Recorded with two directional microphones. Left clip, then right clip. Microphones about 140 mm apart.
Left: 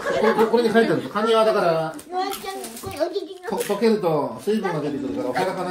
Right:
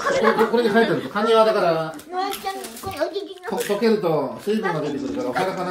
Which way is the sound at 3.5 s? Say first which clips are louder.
Even; 10° left (ahead or behind).